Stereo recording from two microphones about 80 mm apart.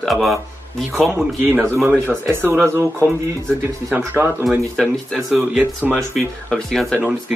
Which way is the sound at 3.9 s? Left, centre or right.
Right.